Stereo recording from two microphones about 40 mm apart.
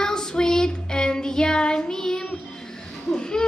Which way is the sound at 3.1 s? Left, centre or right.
Left.